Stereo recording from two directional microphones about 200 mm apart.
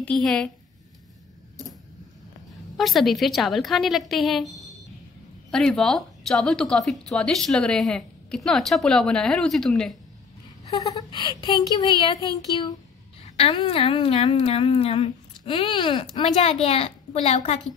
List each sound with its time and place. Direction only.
0.0 s a woman's voice: 5° left (ahead or behind)
2.8 s a woman's voice: centre (ahead or behind)
10.7 s a woman's voice: 20° left (ahead or behind)